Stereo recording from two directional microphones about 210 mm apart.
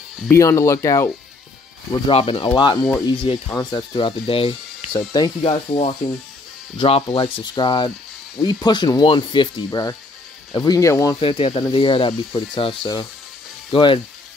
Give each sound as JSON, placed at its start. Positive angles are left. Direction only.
{"t": 0.3, "sound": "speech", "side_deg": 15}
{"t": 1.9, "sound": "speech", "side_deg": 25}
{"t": 11.1, "sound": "speech", "side_deg": 25}